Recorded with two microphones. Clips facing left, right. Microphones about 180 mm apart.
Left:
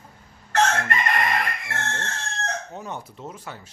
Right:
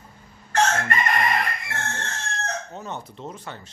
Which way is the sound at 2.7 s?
10° left (ahead or behind).